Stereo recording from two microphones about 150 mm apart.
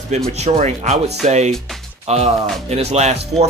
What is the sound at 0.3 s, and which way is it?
Speech, 45° right (ahead or behind).